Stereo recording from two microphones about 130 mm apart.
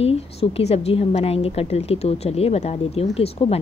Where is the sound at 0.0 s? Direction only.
50° left (ahead or behind).